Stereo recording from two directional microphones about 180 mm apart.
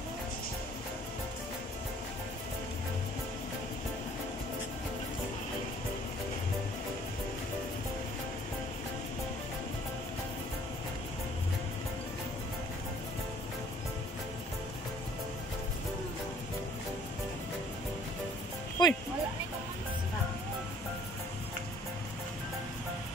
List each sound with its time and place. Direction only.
18.8 s music: 25° left (ahead or behind)